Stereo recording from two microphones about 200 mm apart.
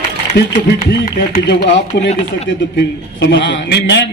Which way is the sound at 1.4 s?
60° left (ahead or behind).